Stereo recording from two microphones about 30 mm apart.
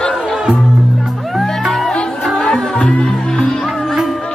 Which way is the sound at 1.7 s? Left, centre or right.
Centre.